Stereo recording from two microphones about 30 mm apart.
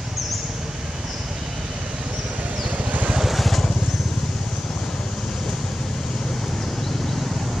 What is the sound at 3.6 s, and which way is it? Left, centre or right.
Vehicle, left.